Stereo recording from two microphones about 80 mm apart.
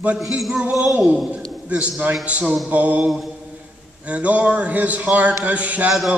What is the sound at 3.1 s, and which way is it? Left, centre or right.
Speech, centre.